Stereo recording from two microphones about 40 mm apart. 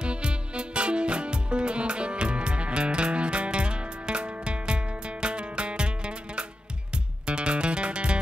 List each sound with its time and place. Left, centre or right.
0.0 s music: right